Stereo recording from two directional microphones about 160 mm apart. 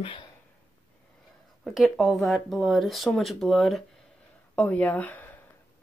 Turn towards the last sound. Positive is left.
turn(degrees=10)  # may be behind; listen again after turning